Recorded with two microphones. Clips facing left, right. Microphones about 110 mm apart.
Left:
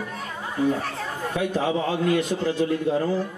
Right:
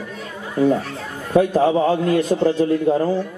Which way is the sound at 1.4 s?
40° right (ahead or behind).